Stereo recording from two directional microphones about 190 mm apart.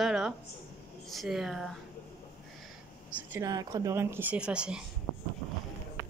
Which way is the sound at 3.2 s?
10° right (ahead or behind).